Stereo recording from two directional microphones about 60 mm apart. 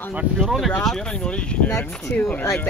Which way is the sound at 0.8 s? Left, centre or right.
Centre.